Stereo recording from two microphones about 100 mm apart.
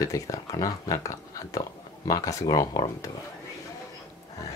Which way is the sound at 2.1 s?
35° left (ahead or behind).